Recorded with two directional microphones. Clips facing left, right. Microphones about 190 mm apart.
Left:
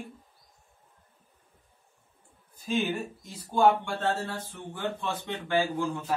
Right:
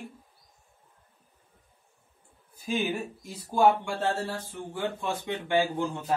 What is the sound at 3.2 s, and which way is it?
Speech, 10° right (ahead or behind).